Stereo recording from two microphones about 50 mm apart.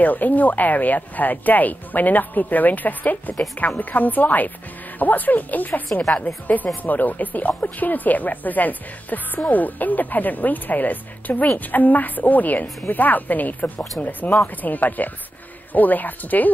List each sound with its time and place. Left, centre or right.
0.0 s speech: left